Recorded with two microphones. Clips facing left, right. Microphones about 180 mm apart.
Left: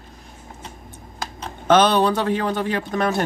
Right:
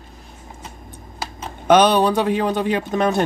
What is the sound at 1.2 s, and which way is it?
Speech, 10° right (ahead or behind).